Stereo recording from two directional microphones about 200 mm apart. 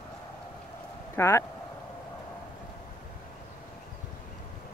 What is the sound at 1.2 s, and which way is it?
Speech, 15° left (ahead or behind).